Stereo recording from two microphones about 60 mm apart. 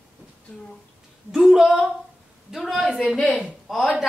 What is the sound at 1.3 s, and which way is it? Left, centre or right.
A woman's voice, centre.